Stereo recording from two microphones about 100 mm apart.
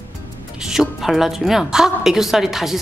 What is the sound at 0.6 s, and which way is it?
A woman's voice, 5° right (ahead or behind).